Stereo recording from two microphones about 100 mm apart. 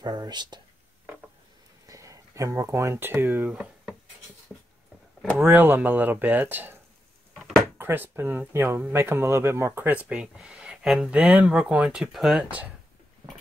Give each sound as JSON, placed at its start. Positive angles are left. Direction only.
{"t": 0.0, "sound": "speech", "side_deg": -45}
{"t": 1.9, "sound": "speech", "side_deg": -35}
{"t": 5.4, "sound": "speech", "side_deg": -20}
{"t": 7.3, "sound": "a sound", "side_deg": 0}
{"t": 7.7, "sound": "speech", "side_deg": -20}